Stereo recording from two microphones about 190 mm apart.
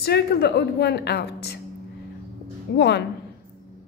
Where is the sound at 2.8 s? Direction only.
60° left (ahead or behind).